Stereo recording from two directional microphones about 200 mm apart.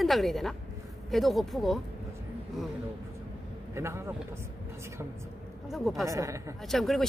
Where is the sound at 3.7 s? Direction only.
15° right (ahead or behind).